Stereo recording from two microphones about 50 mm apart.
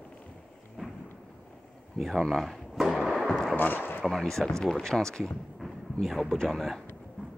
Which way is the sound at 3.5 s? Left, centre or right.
Left.